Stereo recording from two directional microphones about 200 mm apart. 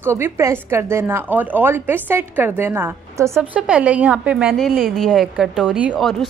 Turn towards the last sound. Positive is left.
turn(degrees=0)  # may be behind; listen again after turning